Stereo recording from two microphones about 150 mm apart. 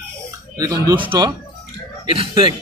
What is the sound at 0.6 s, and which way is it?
Speech, 20° right (ahead or behind).